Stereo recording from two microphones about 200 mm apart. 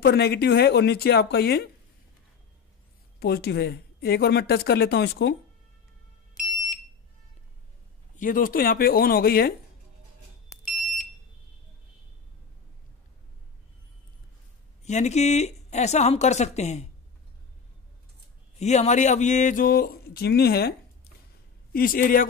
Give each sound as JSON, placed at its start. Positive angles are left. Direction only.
{"t": 0.0, "sound": "speech", "side_deg": 50}
{"t": 3.2, "sound": "speech", "side_deg": 55}
{"t": 8.2, "sound": "speech", "side_deg": 45}
{"t": 10.8, "sound": "smoke detector", "side_deg": 0}
{"t": 14.8, "sound": "speech", "side_deg": 35}
{"t": 18.6, "sound": "speech", "side_deg": 35}
{"t": 21.7, "sound": "speech", "side_deg": 45}